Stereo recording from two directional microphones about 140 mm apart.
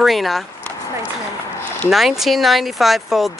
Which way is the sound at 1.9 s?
Centre (ahead or behind).